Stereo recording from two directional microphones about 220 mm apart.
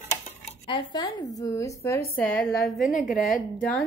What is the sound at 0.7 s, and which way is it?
A woman's voice, 25° left (ahead or behind).